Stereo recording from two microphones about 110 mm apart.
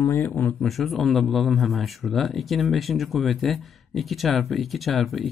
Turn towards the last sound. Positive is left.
turn(degrees=0)  # may be behind; listen again after turning